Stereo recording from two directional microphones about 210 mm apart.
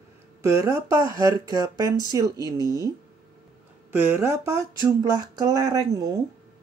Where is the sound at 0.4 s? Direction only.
15° right (ahead or behind).